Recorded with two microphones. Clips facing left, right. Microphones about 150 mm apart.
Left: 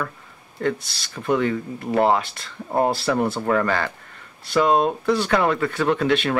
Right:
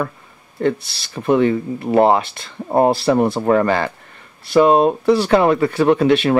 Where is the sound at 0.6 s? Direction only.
25° right (ahead or behind).